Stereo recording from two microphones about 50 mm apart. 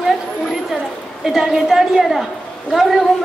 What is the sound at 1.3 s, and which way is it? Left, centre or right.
A woman's voice, centre.